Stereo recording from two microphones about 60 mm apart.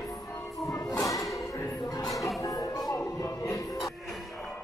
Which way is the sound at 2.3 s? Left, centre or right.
Left.